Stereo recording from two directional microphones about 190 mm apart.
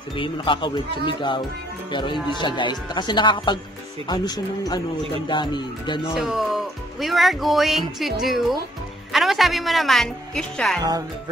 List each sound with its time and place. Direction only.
0.1 s speech: 25° left (ahead or behind)
6.1 s speech: centre (ahead or behind)